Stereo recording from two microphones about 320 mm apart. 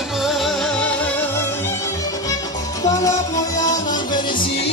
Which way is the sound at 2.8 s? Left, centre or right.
Centre.